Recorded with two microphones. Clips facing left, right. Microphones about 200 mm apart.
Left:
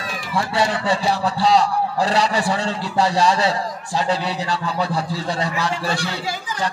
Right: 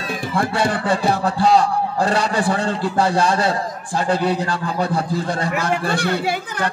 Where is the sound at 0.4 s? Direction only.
50° right (ahead or behind).